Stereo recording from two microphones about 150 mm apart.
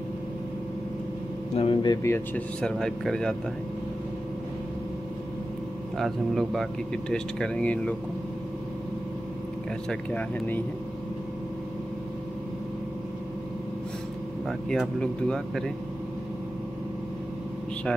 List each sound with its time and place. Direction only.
1.5 s speech: 40° left (ahead or behind)
2.0 s speech: 10° left (ahead or behind)
5.9 s speech: centre (ahead or behind)
9.8 s speech: 10° left (ahead or behind)
14.7 s speech: 5° left (ahead or behind)